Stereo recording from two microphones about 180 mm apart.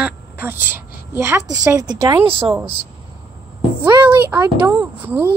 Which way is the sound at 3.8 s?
10° right (ahead or behind).